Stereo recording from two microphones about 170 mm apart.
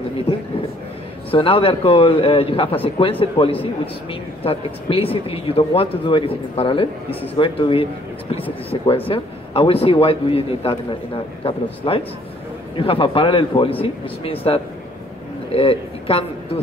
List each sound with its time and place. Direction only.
1.3 s speech: 30° left (ahead or behind)